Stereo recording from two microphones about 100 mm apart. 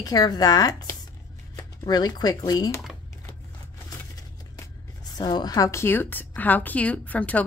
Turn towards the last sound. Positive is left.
turn(degrees=15)  # may be behind; listen again after turning